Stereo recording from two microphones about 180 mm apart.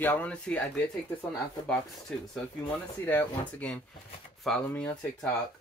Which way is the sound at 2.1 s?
5° left (ahead or behind).